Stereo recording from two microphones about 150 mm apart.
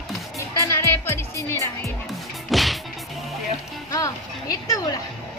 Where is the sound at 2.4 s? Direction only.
Centre (ahead or behind).